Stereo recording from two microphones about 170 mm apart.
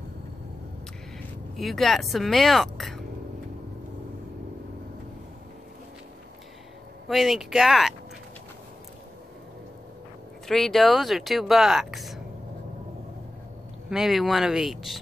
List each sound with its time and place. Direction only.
1.6 s speech: centre (ahead or behind)
7.1 s speech: centre (ahead or behind)
10.5 s speech: centre (ahead or behind)
13.8 s speech: centre (ahead or behind)